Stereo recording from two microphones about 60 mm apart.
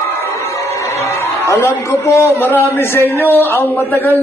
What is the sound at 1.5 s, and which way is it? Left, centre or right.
A man's voice, left.